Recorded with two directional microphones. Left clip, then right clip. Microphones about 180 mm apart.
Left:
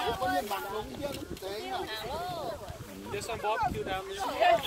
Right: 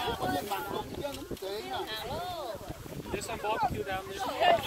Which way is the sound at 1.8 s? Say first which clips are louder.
Even; 5° left (ahead or behind).